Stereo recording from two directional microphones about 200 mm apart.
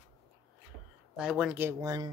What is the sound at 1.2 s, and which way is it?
Speech, 5° right (ahead or behind).